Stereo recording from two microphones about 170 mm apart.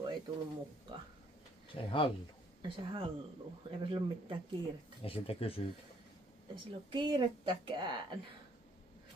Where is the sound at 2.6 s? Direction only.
30° right (ahead or behind).